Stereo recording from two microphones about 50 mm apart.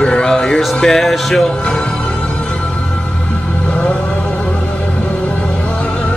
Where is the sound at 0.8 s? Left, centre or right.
Centre.